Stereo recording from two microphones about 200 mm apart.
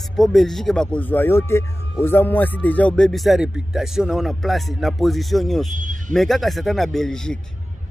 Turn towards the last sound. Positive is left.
turn(degrees=5)  # may be behind; listen again after turning